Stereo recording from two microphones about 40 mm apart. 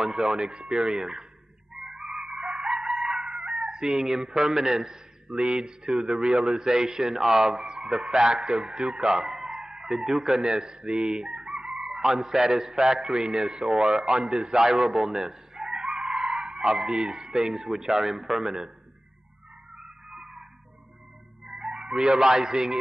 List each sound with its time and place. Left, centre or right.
0.0 s speech: centre
1.8 s chicken: centre
3.6 s speech: centre
19.8 s music: centre
21.5 s speech: centre